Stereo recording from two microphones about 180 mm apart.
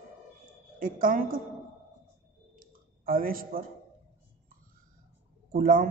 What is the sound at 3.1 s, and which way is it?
Speech, 55° right (ahead or behind).